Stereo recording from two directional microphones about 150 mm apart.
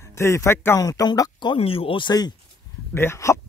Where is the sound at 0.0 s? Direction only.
20° left (ahead or behind).